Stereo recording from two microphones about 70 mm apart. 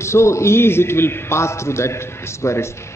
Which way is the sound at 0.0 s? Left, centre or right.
Left.